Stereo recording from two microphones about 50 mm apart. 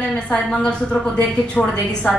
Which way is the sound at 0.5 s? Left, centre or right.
Left.